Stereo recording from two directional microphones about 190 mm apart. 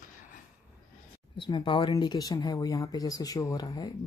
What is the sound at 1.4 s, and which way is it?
Speech, 25° left (ahead or behind).